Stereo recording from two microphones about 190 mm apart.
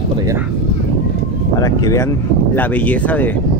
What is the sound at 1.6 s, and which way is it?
Speech, 20° left (ahead or behind).